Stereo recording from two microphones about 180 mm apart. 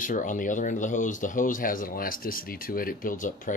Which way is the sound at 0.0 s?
45° left (ahead or behind).